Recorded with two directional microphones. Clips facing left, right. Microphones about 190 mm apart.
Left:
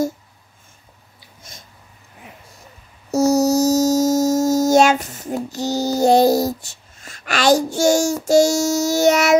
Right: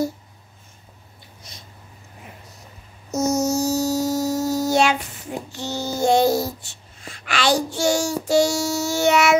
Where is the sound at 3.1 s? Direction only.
35° left (ahead or behind).